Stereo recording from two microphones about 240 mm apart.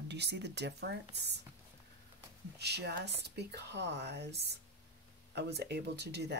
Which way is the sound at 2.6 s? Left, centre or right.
Right.